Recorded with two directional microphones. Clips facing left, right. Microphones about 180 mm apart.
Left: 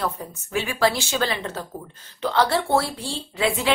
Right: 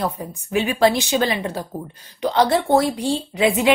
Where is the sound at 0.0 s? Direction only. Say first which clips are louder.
Right 3 dB; 15° right (ahead or behind).